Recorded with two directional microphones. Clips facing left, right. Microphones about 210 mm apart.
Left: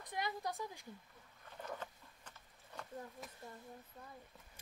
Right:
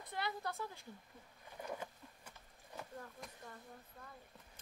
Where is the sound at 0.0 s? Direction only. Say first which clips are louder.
Left 1 dB; 15° left (ahead or behind).